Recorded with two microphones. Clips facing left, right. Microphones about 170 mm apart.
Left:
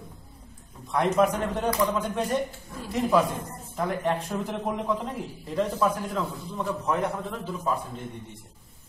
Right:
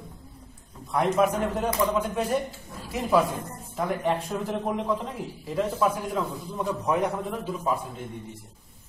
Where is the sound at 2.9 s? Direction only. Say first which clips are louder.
Even; 5° right (ahead or behind).